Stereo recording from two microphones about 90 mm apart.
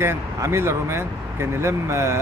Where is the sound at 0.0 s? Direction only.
30° right (ahead or behind).